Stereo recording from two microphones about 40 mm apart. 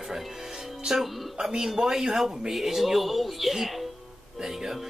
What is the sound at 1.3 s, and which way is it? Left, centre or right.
Speech, centre.